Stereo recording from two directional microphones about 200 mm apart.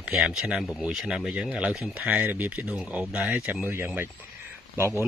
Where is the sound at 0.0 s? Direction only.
5° right (ahead or behind).